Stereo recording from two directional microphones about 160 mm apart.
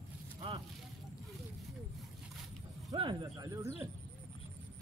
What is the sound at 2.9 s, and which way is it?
Speech, 25° right (ahead or behind).